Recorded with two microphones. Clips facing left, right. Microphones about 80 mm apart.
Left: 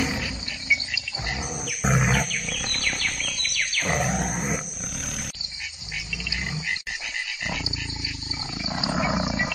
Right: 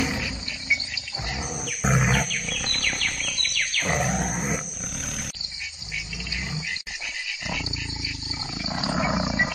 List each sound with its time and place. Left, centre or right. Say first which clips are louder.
1.5 s wild animals: even; centre
7.2 s dog: right 2 dB; left
8.6 s wild animals: even; centre